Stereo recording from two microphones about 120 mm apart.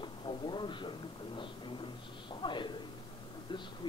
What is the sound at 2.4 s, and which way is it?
Speech, 40° left (ahead or behind).